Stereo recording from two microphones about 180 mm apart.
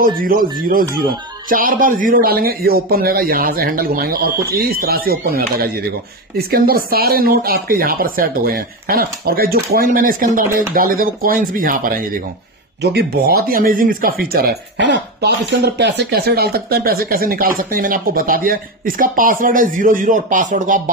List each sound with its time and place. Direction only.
0.0 s speech: 50° right (ahead or behind)
12.8 s speech: 65° right (ahead or behind); by 20.9 s 45° right (ahead or behind)